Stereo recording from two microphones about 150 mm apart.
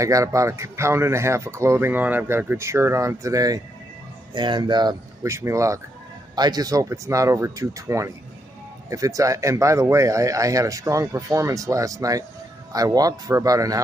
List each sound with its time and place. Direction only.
0.0 s speech: 20° right (ahead or behind)